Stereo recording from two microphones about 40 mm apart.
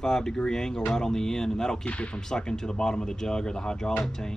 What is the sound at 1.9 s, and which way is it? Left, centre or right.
Speech, left.